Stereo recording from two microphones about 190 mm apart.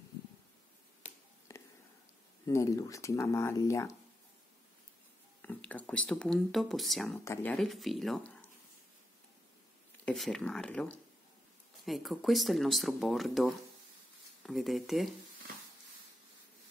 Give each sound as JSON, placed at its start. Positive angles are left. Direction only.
{"t": 1.5, "sound": "a sound", "side_deg": 15}
{"t": 2.4, "sound": "speech", "side_deg": 15}
{"t": 5.4, "sound": "speech", "side_deg": 10}
{"t": 10.0, "sound": "speech", "side_deg": 0}